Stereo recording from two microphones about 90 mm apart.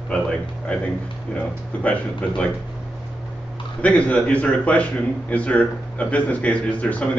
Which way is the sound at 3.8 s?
15° left (ahead or behind).